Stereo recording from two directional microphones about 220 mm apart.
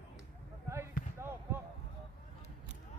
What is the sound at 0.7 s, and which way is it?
Basketball bounce, 10° right (ahead or behind).